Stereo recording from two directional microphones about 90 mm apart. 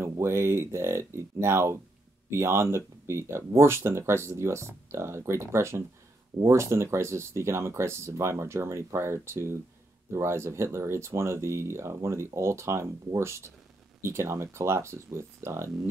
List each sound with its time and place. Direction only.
0.0 s speech: 30° right (ahead or behind)